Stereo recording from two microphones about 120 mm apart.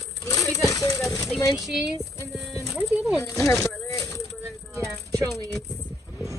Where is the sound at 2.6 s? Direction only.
Centre (ahead or behind).